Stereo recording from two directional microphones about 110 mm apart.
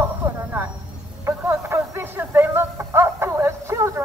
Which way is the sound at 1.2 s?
20° right (ahead or behind).